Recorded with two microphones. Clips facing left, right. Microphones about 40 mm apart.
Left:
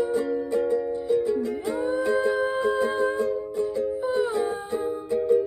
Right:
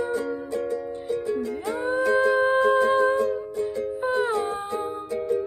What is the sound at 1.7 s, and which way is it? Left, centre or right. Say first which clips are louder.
Music: right 3 dB; right.